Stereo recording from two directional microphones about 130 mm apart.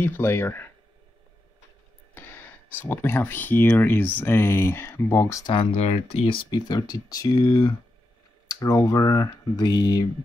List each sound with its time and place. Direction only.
0.0 s speech: 20° left (ahead or behind)
2.1 s speech: 15° left (ahead or behind)
5.5 s speech: 50° left (ahead or behind); by 10.0 s 30° left (ahead or behind)